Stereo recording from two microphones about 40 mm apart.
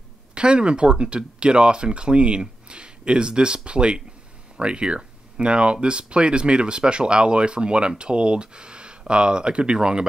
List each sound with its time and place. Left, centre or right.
0.3 s speech: right